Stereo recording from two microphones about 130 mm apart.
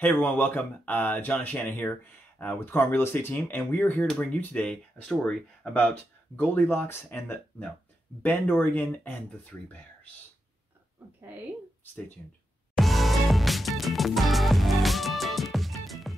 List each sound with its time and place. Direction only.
0.0 s speech: 15° left (ahead or behind)
12.7 s music: centre (ahead or behind)